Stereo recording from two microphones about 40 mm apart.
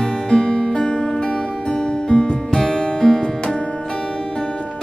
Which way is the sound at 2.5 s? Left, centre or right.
Centre.